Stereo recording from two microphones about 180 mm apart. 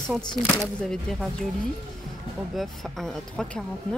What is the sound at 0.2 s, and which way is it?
Speech, 25° left (ahead or behind).